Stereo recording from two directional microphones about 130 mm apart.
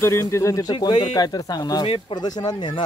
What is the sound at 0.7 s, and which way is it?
Speech, 35° left (ahead or behind).